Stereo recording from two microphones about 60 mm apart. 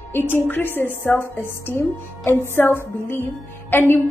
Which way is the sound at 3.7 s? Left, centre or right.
Left.